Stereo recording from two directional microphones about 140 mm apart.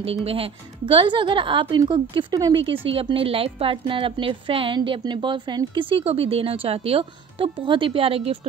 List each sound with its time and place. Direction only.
0.0 s a woman's voice: 45° right (ahead or behind)